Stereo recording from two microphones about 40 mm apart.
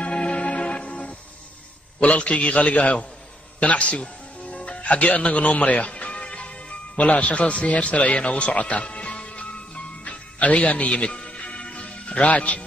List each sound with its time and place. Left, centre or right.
0.0 s music: left
2.0 s a man's voice: left
3.9 s music: left